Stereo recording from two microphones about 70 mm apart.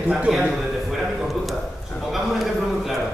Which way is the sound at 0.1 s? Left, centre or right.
Centre.